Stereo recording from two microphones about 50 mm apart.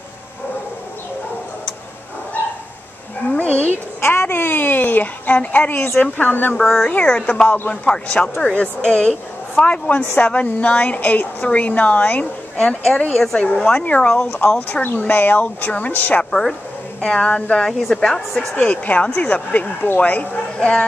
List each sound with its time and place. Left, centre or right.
3.3 s a sound: left
4.0 s a sound: left
6.1 s speech: left
6.6 s speech: centre
7.1 s speech: centre
7.4 s speech: left
7.7 s a woman's voice: centre
12.5 s speech: centre
13.1 s speech: centre
13.6 s a woman's voice: left
14.4 s speech: left
16.3 s speech: centre
18.6 s a woman's voice: left